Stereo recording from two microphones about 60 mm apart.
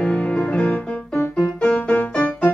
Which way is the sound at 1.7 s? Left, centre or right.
Left.